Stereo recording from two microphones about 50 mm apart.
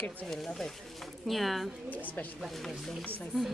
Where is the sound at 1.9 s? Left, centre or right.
Left.